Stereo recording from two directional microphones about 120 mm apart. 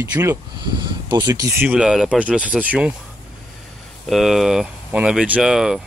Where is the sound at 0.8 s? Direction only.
40° right (ahead or behind).